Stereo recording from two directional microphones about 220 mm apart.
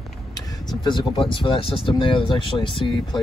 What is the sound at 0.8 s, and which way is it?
Speech, 20° left (ahead or behind).